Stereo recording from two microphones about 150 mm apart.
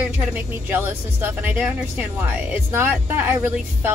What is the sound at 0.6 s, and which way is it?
Speech, 15° right (ahead or behind).